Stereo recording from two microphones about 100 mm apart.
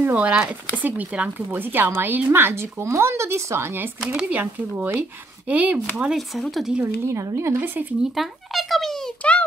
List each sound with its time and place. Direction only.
0.0 s speech: 15° right (ahead or behind)
4.0 s speech: 10° right (ahead or behind)
5.9 s speech: 5° right (ahead or behind)
6.8 s speech: 30° right (ahead or behind)
8.1 s a sound: centre (ahead or behind)